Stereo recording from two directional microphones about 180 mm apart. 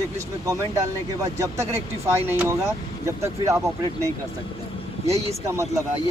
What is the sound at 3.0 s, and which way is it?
Speech, 15° right (ahead or behind).